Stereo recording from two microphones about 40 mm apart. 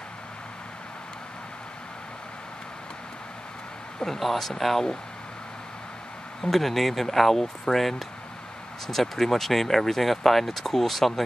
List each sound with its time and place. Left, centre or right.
4.0 s speech: centre
6.4 s speech: centre